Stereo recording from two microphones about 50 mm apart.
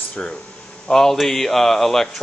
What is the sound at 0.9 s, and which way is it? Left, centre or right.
Speech, centre.